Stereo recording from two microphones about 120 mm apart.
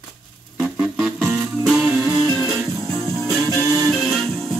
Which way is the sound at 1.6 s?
5° right (ahead or behind).